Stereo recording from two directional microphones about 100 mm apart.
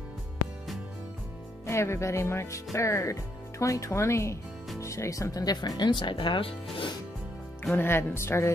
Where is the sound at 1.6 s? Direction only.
25° left (ahead or behind); by 6.9 s 60° left (ahead or behind).